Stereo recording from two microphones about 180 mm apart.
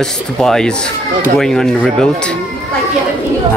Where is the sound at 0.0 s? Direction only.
5° left (ahead or behind).